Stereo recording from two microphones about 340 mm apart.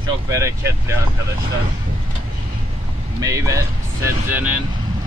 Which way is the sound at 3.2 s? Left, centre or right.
Centre.